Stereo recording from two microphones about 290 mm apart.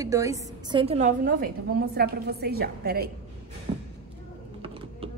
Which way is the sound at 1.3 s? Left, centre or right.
Right.